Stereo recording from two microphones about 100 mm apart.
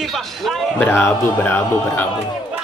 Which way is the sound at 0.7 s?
25° left (ahead or behind).